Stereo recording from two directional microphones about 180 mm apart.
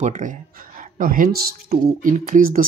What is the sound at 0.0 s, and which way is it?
Speech, 45° right (ahead or behind).